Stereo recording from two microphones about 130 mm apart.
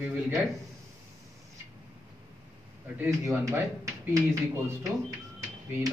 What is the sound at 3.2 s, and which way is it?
Speech, 25° right (ahead or behind).